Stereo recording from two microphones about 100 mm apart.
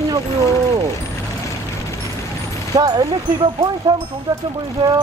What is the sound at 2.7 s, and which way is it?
Speech, 40° right (ahead or behind).